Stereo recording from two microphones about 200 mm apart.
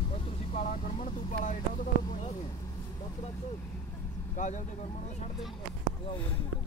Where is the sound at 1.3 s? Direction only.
40° left (ahead or behind).